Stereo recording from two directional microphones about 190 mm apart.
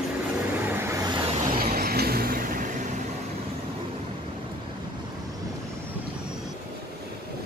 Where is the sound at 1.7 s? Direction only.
50° right (ahead or behind).